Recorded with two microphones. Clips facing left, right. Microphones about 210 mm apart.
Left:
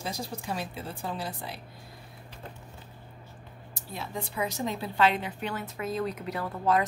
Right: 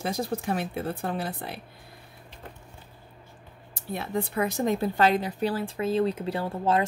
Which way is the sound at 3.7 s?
60° right (ahead or behind).